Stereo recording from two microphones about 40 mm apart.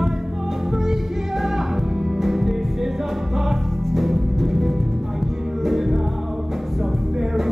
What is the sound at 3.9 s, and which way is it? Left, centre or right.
Music, centre.